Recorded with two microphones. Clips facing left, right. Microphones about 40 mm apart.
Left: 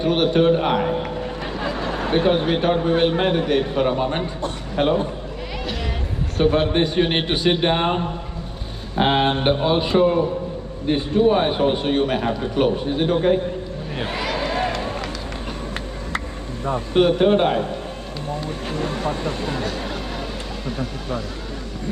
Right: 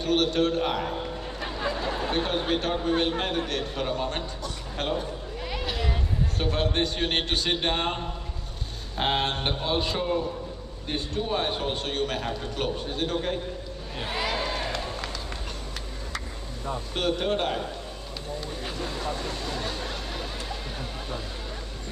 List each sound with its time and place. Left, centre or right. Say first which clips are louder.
0.0 s a man's voice: left 7 dB; centre
2.0 s a man's voice: left 10 dB; left
6.3 s a man's voice: left 10 dB; left
14.6 s run: left 8 dB; left
16.9 s a man's voice: left 11 dB; left
18.7 s speech: left 8 dB; left